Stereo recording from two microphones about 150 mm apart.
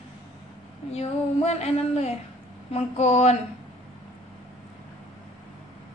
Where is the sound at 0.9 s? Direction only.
45° left (ahead or behind).